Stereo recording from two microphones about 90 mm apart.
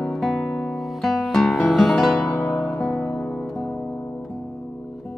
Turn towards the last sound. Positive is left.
turn(degrees=15)  # may be behind; listen again after turning